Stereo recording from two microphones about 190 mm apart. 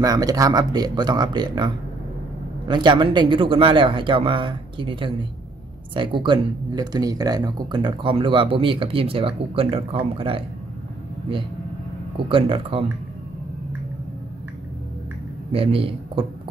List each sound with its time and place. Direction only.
0.0 s speech: 20° right (ahead or behind)
2.7 s speech: 25° right (ahead or behind)
12.3 s speech: 25° right (ahead or behind)
15.5 s speech: 30° right (ahead or behind)